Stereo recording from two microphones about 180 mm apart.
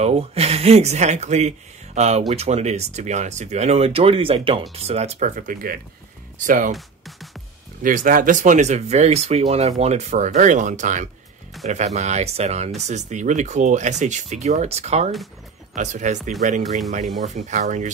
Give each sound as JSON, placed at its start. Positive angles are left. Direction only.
{"t": 0.0, "sound": "speech", "side_deg": -35}
{"t": 6.7, "sound": "music", "side_deg": 0}
{"t": 7.8, "sound": "speech", "side_deg": -50}
{"t": 16.6, "sound": "speech", "side_deg": 0}
{"t": 17.2, "sound": "speech", "side_deg": -40}